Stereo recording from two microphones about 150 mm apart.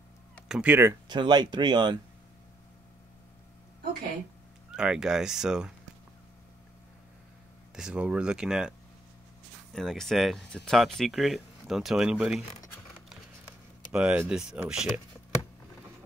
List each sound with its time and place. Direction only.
0.5 s speech: 10° right (ahead or behind)
1.0 s speech: 30° right (ahead or behind)
4.6 s speech: 5° right (ahead or behind)
7.7 s speech: 5° right (ahead or behind)
13.9 s speech: 10° right (ahead or behind)